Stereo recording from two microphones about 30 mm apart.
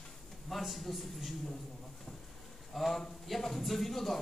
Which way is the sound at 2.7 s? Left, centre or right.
Centre.